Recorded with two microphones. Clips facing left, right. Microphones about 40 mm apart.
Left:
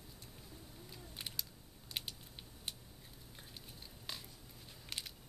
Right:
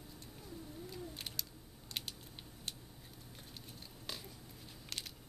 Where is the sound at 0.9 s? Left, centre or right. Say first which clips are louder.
Even; centre.